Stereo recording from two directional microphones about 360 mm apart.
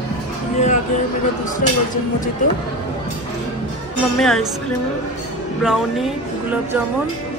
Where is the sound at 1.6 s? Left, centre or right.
Left.